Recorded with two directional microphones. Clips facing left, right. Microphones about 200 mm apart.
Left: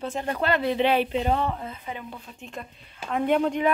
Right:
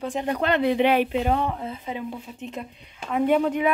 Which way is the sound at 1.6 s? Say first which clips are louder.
Right 5 dB; 25° right (ahead or behind).